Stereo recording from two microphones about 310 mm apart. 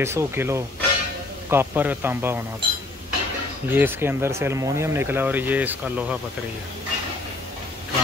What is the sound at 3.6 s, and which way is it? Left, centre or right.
Speech, centre.